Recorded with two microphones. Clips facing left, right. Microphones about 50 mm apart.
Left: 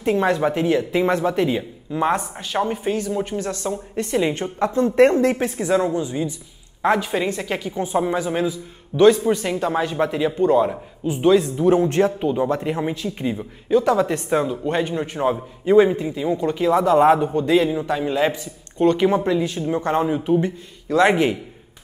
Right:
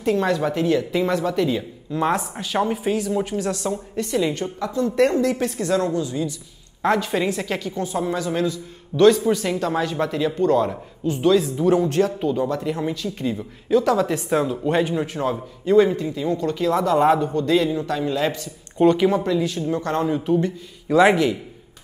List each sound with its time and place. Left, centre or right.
0.0 s speech: left
1.6 s speech: centre
4.2 s a woman's voice: left
5.4 s speech: centre
6.8 s speech: centre
7.5 s speech: centre
11.8 s speech: left
13.7 s speech: centre
15.6 s speech: centre
18.8 s speech: centre
19.1 s speech: left
20.9 s speech: centre